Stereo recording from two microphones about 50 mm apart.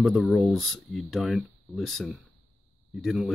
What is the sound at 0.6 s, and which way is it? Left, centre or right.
Speech, centre.